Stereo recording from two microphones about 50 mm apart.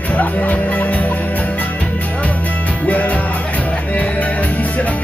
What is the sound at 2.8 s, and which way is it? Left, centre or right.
Music, left.